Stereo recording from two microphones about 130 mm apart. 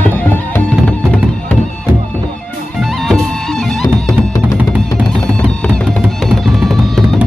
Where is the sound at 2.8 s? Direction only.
Centre (ahead or behind).